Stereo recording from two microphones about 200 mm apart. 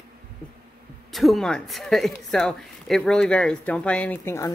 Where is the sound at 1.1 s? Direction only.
Centre (ahead or behind).